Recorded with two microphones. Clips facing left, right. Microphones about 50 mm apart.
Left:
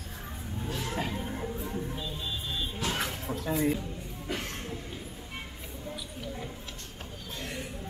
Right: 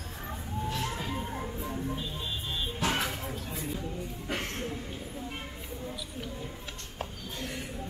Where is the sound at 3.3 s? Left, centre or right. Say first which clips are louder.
Left 8 dB; left.